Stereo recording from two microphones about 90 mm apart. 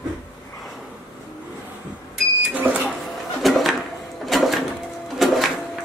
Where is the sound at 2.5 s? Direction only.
15° right (ahead or behind).